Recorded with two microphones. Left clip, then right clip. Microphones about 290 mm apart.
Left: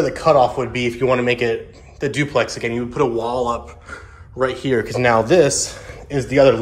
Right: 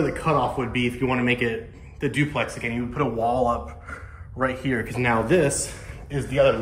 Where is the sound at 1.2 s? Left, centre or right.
Centre.